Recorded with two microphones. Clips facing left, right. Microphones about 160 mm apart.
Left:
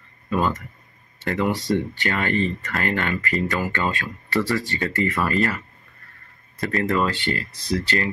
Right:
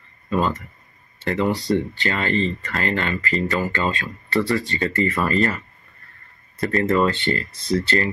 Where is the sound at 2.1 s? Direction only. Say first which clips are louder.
Right 1 dB; 10° left (ahead or behind).